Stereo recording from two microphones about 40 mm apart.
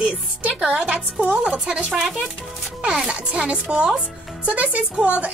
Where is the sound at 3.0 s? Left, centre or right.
Right.